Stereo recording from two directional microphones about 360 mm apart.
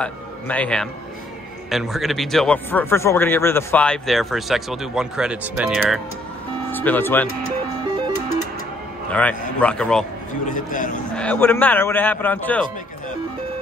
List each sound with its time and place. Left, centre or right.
0.0 s a man's voice: centre
9.6 s speech: centre
10.4 s a man's voice: left
11.1 s speech: centre